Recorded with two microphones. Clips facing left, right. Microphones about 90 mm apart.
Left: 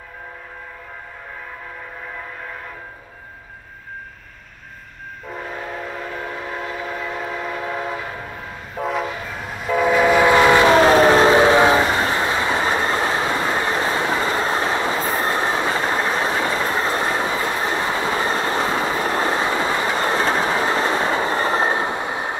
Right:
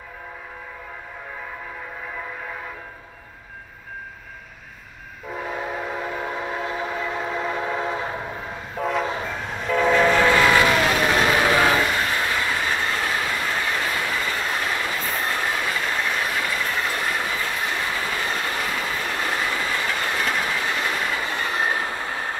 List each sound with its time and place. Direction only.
5.3 s train: 5° right (ahead or behind)
7.9 s train: 25° right (ahead or behind)
8.7 s train: centre (ahead or behind); by 22.4 s 20° left (ahead or behind)